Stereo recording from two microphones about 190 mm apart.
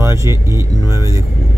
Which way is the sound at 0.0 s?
15° right (ahead or behind).